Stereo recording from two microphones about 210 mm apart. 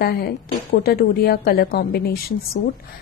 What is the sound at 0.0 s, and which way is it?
A woman's voice, 45° left (ahead or behind).